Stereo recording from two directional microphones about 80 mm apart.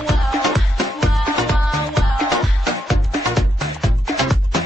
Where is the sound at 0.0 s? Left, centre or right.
Centre.